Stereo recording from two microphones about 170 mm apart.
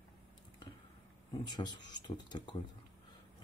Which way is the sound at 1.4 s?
25° left (ahead or behind).